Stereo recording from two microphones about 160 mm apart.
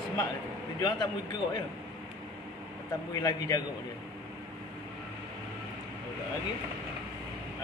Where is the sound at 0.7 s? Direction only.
25° left (ahead or behind).